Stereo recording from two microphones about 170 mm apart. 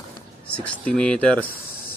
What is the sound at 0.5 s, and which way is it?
Speech, 5° left (ahead or behind).